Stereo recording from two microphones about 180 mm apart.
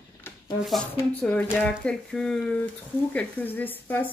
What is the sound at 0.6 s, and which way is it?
A woman's voice, centre (ahead or behind).